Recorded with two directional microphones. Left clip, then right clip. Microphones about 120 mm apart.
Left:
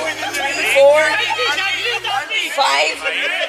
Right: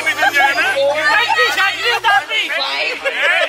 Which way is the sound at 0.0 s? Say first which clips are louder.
Right 7 dB; 25° right (ahead or behind).